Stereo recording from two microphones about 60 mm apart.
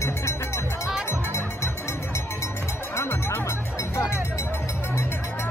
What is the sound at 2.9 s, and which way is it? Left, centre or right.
Music, left.